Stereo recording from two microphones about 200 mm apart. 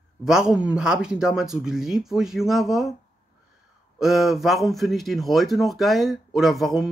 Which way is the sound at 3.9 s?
Centre (ahead or behind).